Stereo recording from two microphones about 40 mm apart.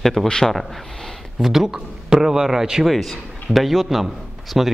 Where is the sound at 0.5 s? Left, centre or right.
Centre.